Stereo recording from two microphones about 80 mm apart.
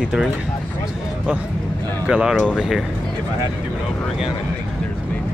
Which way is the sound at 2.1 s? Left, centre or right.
Centre.